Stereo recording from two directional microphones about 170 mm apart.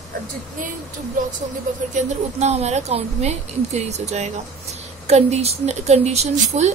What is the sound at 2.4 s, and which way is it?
A woman's voice, 40° right (ahead or behind).